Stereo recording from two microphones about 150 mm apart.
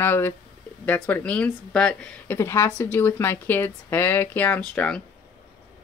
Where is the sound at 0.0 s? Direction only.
15° left (ahead or behind).